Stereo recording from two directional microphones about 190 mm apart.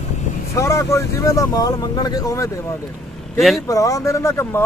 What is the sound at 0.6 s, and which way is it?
Speech, 15° left (ahead or behind).